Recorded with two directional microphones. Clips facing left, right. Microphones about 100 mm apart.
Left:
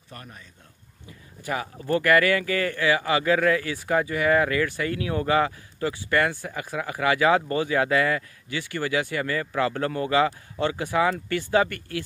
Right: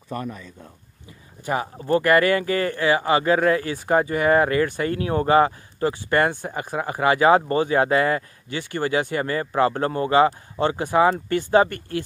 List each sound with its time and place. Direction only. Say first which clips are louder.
1.4 s speech: right 4 dB; 30° right (ahead or behind)